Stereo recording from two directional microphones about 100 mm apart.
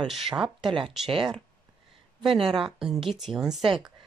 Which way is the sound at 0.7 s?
60° right (ahead or behind).